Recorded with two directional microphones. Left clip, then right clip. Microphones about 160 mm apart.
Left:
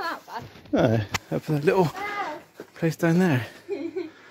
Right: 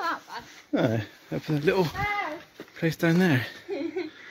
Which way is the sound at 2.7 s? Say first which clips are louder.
Left 1 dB; 20° left (ahead or behind).